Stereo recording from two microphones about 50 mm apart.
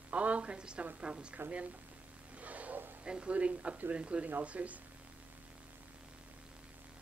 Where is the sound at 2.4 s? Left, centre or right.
Right.